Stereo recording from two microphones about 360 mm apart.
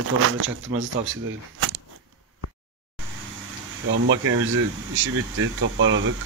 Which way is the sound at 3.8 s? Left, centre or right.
Right.